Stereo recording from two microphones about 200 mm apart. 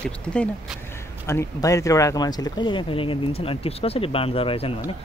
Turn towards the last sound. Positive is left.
turn(degrees=30)  # may be behind; listen again after turning